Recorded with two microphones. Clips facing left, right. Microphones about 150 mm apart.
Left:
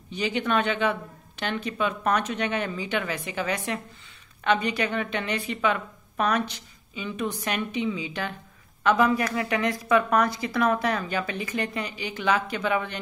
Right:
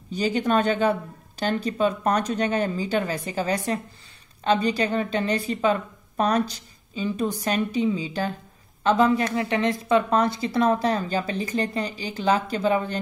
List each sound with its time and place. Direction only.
0.1 s a woman's voice: 40° right (ahead or behind)